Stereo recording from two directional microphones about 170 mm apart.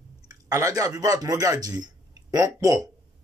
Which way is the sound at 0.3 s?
20° right (ahead or behind).